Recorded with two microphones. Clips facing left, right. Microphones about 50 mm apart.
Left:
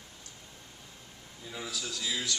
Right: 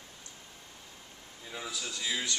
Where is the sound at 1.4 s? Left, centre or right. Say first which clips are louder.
Left 1 dB; centre.